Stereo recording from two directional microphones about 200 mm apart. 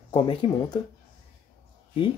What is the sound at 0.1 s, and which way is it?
Speech, 25° left (ahead or behind).